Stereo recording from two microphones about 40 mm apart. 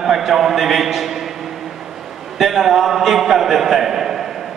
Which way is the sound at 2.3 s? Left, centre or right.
Centre.